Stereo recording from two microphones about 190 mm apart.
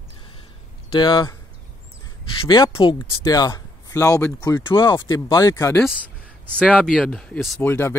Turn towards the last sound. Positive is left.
turn(degrees=10)  # may be behind; listen again after turning